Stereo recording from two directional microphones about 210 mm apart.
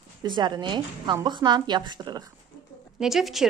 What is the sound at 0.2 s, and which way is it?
A woman's voice, 20° right (ahead or behind).